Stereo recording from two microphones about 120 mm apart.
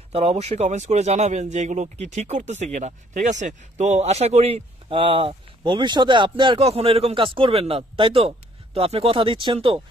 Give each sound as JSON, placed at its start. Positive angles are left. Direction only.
{"t": 0.1, "sound": "speech", "side_deg": -60}
{"t": 6.6, "sound": "a man's voice", "side_deg": -55}